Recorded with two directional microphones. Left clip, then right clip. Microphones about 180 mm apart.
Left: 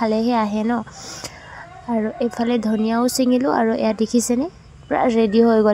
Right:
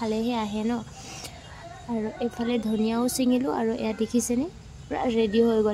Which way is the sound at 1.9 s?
25° left (ahead or behind).